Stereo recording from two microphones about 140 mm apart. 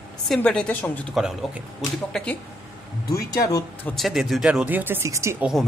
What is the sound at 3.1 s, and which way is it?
Speech, 25° left (ahead or behind).